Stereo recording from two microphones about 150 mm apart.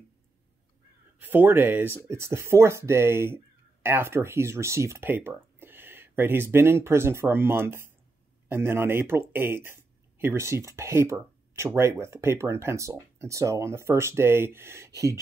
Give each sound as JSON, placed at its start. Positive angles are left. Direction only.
{"t": 1.2, "sound": "speech", "side_deg": -15}